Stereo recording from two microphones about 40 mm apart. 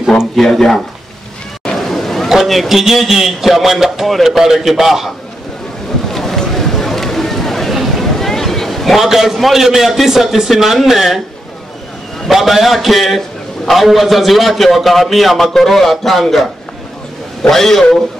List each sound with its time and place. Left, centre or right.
0.4 s speech: centre
1.8 s a sound: centre
2.3 s a man's voice: centre
6.1 s boat: centre
6.4 s a sound: centre
7.9 s a man's voice: centre
12.3 s a man's voice: centre